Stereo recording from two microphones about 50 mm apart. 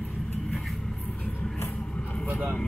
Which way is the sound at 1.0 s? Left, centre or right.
Left.